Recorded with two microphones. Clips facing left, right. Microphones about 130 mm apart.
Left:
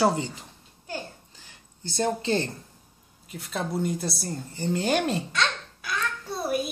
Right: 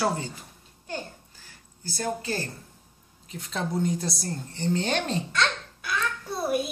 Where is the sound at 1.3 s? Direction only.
20° left (ahead or behind).